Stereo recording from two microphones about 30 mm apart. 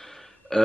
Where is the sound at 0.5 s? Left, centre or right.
Left.